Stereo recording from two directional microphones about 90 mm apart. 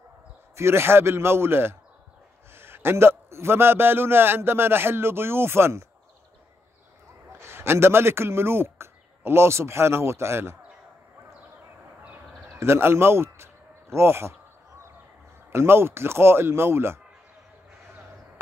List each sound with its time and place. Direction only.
0.6 s a man's voice: 30° right (ahead or behind)
7.3 s speech: 30° right (ahead or behind)
12.5 s a man's voice: 25° right (ahead or behind)
15.5 s a man's voice: 25° right (ahead or behind)